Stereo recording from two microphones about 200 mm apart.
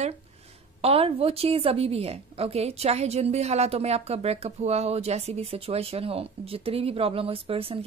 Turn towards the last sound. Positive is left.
turn(degrees=-30)  # may be behind; listen again after turning